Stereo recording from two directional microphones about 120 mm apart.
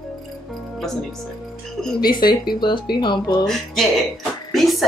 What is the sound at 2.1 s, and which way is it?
Speech, 40° left (ahead or behind).